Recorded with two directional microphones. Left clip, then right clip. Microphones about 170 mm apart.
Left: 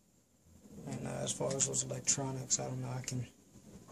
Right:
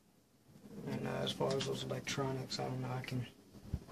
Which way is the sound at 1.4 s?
Centre (ahead or behind).